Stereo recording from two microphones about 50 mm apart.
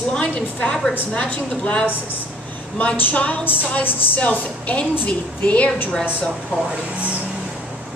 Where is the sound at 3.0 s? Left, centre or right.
Left.